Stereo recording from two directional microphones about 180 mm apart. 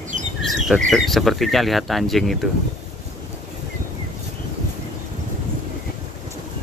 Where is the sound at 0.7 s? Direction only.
Centre (ahead or behind).